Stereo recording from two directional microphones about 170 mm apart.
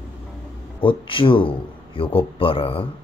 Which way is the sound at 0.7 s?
30° left (ahead or behind).